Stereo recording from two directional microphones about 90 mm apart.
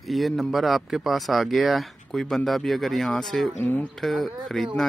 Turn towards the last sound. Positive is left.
turn(degrees=0)  # may be behind; listen again after turning